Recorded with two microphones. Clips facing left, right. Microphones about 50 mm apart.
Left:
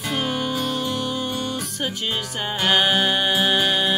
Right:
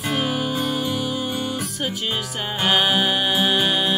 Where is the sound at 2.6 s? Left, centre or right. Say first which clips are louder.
Even; centre.